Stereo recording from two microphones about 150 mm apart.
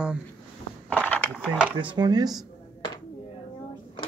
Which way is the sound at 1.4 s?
10° right (ahead or behind).